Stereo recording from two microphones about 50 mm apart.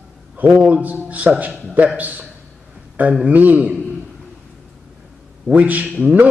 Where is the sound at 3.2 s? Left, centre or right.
Right.